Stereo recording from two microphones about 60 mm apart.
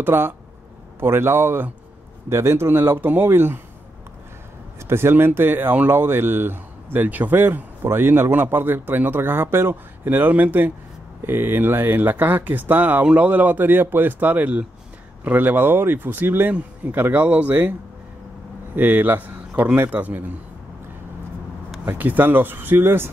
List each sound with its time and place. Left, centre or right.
0.0 s a man's voice: right
4.7 s speech: right
18.8 s speech: right
21.8 s speech: right